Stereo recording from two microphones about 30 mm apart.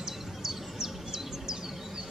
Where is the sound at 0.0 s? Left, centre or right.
Centre.